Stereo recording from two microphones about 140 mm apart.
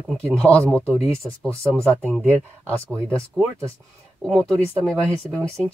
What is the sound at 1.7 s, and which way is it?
Speech, 20° right (ahead or behind).